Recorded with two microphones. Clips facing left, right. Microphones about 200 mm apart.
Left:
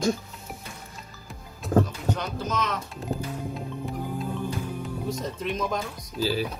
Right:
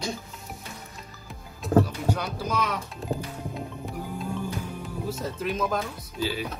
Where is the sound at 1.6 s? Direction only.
10° right (ahead or behind).